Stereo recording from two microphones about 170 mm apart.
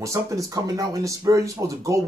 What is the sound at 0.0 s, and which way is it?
Speech, 20° right (ahead or behind).